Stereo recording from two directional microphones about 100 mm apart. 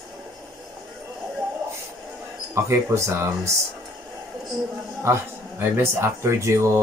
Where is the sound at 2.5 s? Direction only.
30° right (ahead or behind).